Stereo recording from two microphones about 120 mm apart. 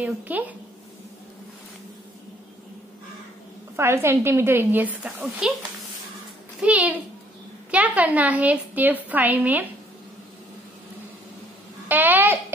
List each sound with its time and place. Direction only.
0.0 s a woman's voice: 15° right (ahead or behind)
3.7 s a woman's voice: 20° right (ahead or behind); by 5.6 s 5° right (ahead or behind)
6.6 s a woman's voice: 10° right (ahead or behind)
11.9 s a woman's voice: 15° right (ahead or behind)